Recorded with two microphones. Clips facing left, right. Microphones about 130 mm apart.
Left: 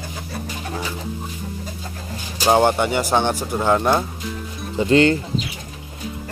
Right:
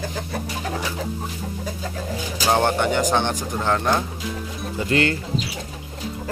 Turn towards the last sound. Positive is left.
turn(degrees=25)  # may be behind; listen again after turning